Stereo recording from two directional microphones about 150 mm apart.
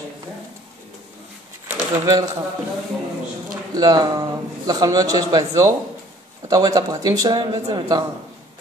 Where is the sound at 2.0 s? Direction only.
20° right (ahead or behind).